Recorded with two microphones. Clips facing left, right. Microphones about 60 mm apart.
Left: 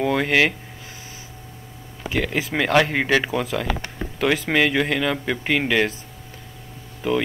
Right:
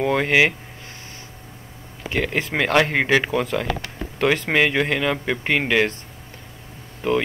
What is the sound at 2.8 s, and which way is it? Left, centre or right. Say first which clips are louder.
Speech: right 1 dB; centre.